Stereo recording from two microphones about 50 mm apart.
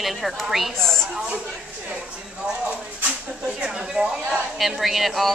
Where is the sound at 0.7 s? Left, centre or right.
Centre.